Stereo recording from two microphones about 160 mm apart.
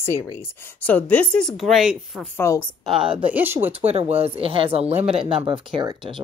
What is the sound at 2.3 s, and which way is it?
Speech, 20° left (ahead or behind).